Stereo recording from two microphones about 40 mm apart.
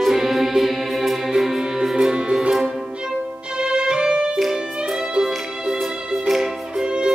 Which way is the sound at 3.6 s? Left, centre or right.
Right.